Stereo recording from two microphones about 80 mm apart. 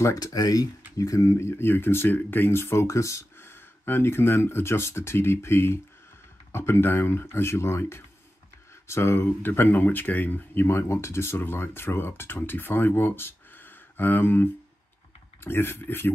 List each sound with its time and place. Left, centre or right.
0.0 s speech: left